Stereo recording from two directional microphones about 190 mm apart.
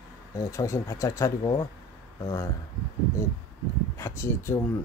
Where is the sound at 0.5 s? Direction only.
15° left (ahead or behind).